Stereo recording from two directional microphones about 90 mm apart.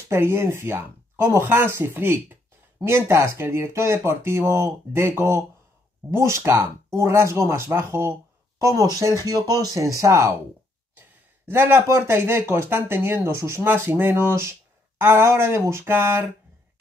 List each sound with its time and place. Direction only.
0.1 s speech: 25° right (ahead or behind)